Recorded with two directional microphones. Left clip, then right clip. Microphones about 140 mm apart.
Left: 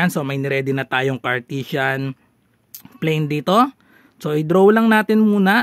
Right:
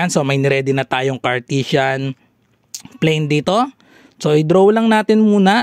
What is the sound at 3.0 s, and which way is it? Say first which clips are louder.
Speech: right 5 dB; 35° right (ahead or behind).